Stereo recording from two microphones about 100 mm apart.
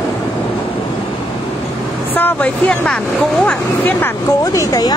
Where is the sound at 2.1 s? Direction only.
15° left (ahead or behind).